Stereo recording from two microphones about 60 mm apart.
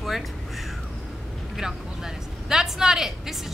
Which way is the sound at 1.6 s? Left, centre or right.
Centre.